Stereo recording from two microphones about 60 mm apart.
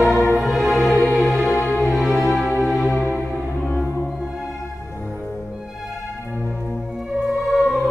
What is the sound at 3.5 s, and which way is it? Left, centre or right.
Music, left.